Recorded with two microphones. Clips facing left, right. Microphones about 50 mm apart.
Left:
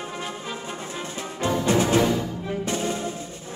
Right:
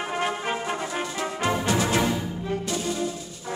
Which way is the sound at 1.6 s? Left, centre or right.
Left.